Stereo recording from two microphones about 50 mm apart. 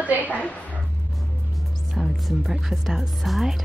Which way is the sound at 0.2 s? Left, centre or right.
Left.